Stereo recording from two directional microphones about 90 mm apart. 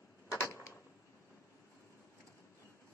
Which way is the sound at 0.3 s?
35° left (ahead or behind).